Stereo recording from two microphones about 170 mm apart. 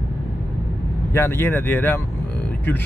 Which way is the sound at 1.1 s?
15° left (ahead or behind).